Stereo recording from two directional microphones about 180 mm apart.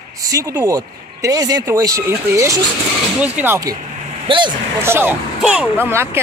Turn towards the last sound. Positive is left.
turn(degrees=-15)  # may be behind; listen again after turning